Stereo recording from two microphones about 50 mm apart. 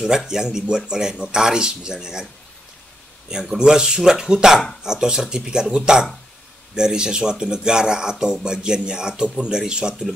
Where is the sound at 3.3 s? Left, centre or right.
Centre.